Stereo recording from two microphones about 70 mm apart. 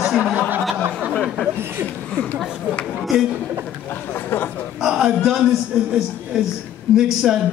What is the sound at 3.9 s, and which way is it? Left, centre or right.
Speech, left.